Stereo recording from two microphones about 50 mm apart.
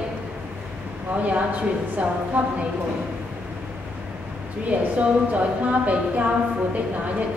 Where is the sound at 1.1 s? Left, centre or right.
Right.